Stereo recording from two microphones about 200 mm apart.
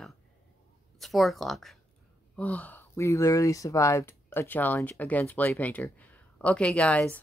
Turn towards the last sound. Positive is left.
turn(degrees=5)  # may be behind; listen again after turning